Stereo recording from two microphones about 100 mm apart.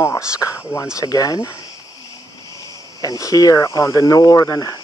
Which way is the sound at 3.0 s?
35° left (ahead or behind).